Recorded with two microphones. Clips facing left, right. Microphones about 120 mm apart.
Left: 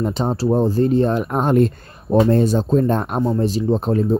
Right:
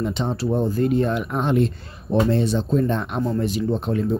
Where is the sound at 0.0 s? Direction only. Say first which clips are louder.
Left 4 dB; 40° left (ahead or behind).